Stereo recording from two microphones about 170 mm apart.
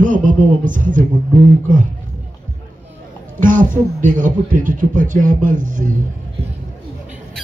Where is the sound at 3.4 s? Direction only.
50° right (ahead or behind).